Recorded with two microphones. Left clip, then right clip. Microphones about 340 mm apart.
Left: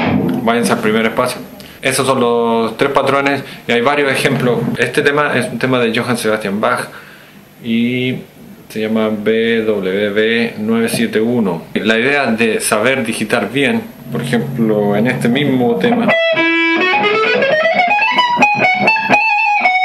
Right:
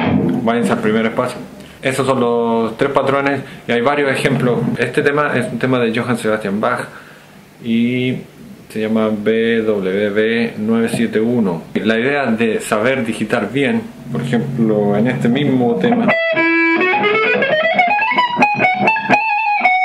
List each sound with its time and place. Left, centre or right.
0.0 s speech: centre
15.5 s speech: centre
15.8 s music: centre